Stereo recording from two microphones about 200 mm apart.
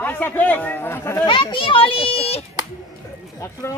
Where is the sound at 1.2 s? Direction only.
25° left (ahead or behind).